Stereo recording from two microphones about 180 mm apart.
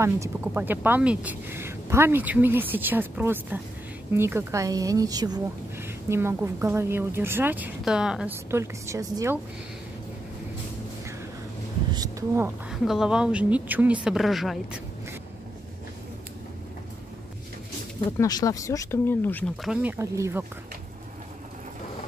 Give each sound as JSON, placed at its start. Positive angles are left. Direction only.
{"t": 0.0, "sound": "a woman's voice", "side_deg": -15}
{"t": 8.5, "sound": "a woman's voice", "side_deg": -15}
{"t": 11.9, "sound": "speech", "side_deg": -20}
{"t": 12.8, "sound": "a woman's voice", "side_deg": 0}
{"t": 18.1, "sound": "speech", "side_deg": 20}
{"t": 19.6, "sound": "a woman's voice", "side_deg": -5}